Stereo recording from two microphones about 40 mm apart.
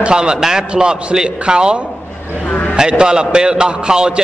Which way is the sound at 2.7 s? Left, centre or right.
Centre.